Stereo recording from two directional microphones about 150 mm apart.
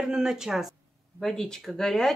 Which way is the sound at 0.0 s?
5° right (ahead or behind).